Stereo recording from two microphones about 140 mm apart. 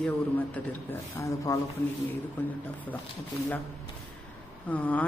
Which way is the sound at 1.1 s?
20° left (ahead or behind).